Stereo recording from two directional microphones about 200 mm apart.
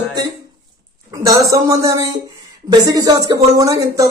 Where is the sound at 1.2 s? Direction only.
15° right (ahead or behind).